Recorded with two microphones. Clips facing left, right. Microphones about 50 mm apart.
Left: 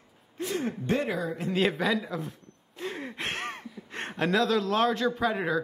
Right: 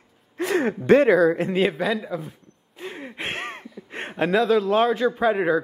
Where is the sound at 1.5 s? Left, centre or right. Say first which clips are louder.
Right 4 dB; centre.